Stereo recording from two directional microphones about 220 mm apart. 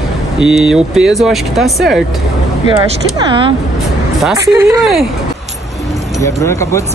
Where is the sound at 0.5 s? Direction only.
5° right (ahead or behind).